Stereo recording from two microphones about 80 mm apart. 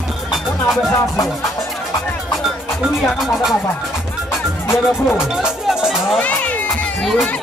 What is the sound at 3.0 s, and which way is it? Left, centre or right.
Speech, centre.